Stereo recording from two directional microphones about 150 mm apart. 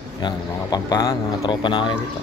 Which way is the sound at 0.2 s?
25° left (ahead or behind).